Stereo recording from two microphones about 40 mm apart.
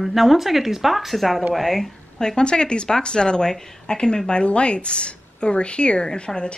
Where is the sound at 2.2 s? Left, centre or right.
Centre.